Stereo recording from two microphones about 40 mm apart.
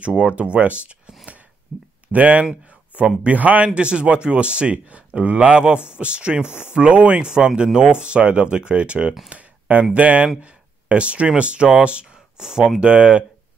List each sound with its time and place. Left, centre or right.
0.0 s speech: right
1.7 s speech: centre
2.1 s speech: right
9.3 s a sound: right
9.9 s speech: right
12.4 s speech: centre